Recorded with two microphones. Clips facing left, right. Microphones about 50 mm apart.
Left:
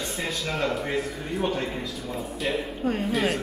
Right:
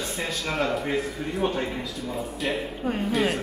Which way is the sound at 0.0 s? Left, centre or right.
Centre.